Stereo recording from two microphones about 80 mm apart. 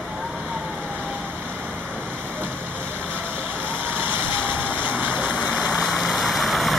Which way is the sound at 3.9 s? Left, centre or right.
Right.